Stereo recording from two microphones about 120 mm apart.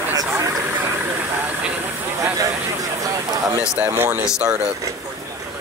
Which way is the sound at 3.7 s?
15° right (ahead or behind).